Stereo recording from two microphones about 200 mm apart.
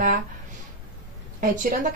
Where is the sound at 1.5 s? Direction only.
40° right (ahead or behind).